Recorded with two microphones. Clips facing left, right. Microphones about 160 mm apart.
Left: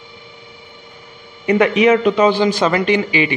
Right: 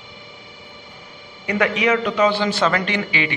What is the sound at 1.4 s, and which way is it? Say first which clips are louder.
A man's voice: left 7 dB; 20° left (ahead or behind).